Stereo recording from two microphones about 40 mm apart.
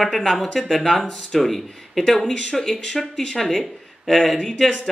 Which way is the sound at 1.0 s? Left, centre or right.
Left.